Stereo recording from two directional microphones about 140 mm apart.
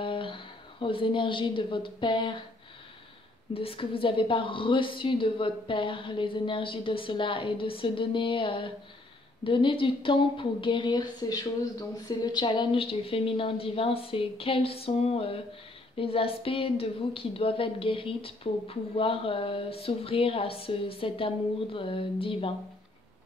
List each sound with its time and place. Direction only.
0.0 s a woman's voice: 40° left (ahead or behind)
3.5 s a woman's voice: 40° left (ahead or behind)